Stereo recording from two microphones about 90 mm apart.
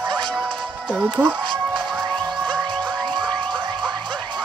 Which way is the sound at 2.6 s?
60° right (ahead or behind).